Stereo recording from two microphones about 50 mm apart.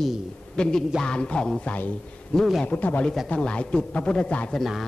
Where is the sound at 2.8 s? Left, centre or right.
Left.